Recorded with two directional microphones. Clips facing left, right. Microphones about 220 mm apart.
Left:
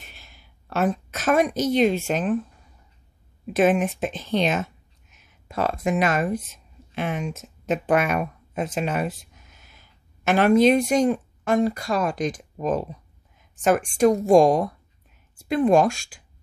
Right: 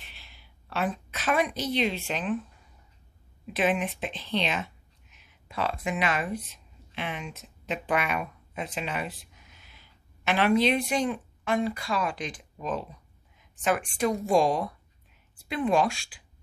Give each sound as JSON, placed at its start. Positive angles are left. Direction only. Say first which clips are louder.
{"t": 0.0, "sound": "a woman's voice", "louder": "left 4 dB", "side_deg": 45}
{"t": 3.4, "sound": "speech", "louder": "left 7 dB", "side_deg": 45}